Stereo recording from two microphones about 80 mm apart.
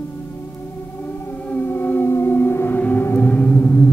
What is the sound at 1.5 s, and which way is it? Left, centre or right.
Music, left.